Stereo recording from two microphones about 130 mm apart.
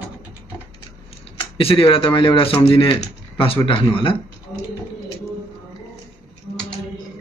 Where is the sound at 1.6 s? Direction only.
45° left (ahead or behind).